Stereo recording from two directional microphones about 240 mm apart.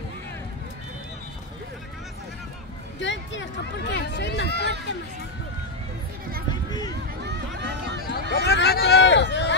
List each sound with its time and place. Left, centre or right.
3.0 s speech: left
7.2 s run: right
8.0 s a sound: left